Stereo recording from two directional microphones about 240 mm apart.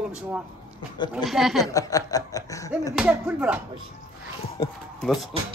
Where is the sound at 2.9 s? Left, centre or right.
Centre.